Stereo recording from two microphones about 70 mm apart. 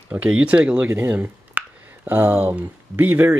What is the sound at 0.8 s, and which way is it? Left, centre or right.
Speech, right.